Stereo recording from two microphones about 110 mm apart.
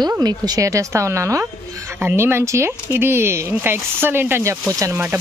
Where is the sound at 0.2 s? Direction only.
35° right (ahead or behind).